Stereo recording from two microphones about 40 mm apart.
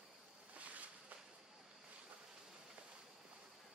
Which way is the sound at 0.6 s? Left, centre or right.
Right.